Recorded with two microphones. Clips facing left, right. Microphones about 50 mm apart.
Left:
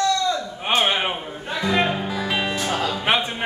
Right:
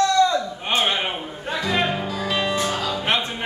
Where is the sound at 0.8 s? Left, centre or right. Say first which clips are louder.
Left 1 dB; centre.